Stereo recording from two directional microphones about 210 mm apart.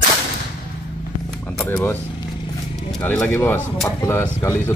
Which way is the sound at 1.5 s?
10° left (ahead or behind).